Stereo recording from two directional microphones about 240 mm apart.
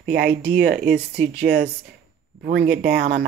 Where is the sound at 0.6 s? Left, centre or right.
Right.